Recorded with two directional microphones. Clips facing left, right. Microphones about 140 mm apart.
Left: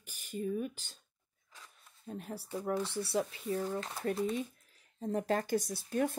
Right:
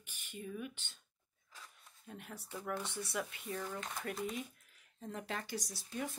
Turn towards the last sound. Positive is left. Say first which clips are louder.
# left 9 dB
turn(degrees=50)  # may be behind; listen again after turning